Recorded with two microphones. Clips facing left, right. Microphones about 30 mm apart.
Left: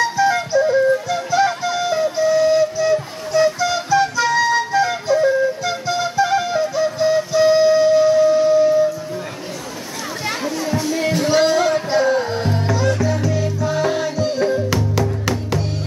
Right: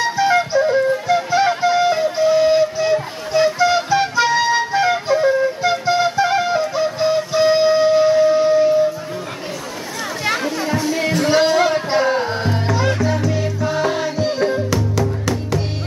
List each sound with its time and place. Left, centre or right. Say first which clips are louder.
0.0 s flute: right 1 dB; right
1.0 s music: right 2 dB; right
2.1 s flute: even; right
10.2 s music: right 3 dB; centre
14.7 s music: even; centre